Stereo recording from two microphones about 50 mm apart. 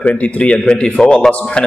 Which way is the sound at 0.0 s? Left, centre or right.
Left.